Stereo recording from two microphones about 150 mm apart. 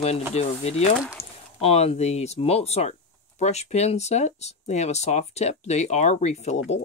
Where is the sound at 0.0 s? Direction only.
45° left (ahead or behind).